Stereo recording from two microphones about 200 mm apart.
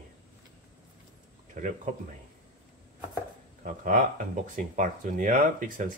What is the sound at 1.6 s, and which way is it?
Speech, 40° right (ahead or behind).